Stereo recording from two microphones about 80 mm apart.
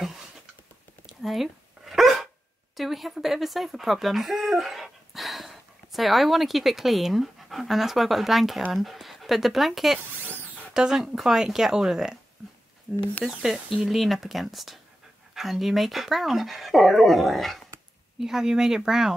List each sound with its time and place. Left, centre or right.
1.0 s dog: centre
2.8 s speech: centre
12.9 s speech: centre
13.3 s speech: centre